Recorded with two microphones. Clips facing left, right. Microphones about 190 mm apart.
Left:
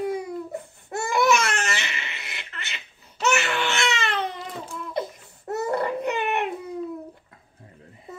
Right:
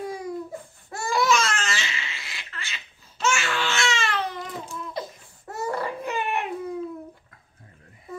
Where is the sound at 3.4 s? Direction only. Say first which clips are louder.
Left 1 dB; 20° left (ahead or behind).